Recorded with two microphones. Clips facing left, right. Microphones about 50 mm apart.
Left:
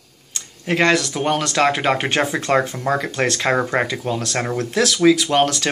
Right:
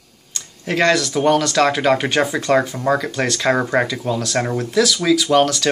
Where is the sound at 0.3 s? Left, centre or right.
Left.